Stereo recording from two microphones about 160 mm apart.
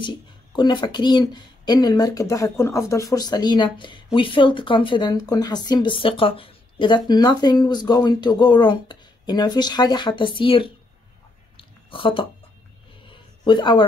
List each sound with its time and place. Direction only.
0.0 s speech: 30° left (ahead or behind)
11.5 s a sound: 35° left (ahead or behind)
13.4 s speech: 30° left (ahead or behind)